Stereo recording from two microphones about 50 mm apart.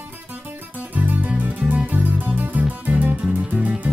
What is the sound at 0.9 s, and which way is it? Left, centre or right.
Music, right.